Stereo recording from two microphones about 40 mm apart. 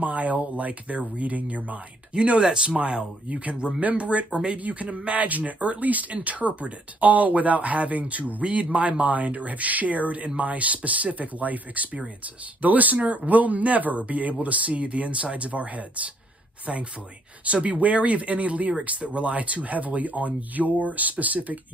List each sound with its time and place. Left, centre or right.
0.0 s speech: right
2.4 s speech: right
3.8 s speech: right
4.3 s speech: right
4.6 s speech: right
17.5 s speech: right